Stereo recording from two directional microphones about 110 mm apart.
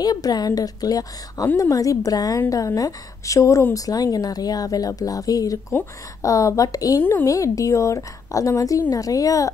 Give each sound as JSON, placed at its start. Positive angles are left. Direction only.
{"t": 0.0, "sound": "a woman's voice", "side_deg": 35}